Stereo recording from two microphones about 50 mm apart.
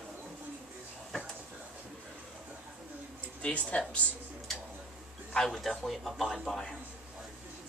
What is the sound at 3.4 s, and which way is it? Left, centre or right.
Speech, left.